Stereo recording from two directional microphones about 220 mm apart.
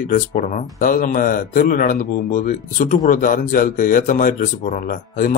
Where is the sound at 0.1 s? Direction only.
35° left (ahead or behind).